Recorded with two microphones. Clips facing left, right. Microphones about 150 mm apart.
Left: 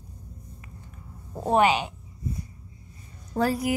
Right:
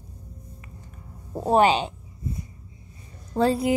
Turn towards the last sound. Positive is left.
turn(degrees=-30)  # may be behind; listen again after turning